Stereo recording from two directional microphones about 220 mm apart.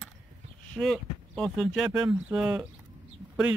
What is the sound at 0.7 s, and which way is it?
Speech, centre (ahead or behind).